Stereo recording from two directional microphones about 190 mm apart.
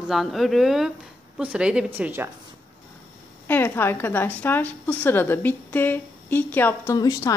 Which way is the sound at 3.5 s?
10° left (ahead or behind).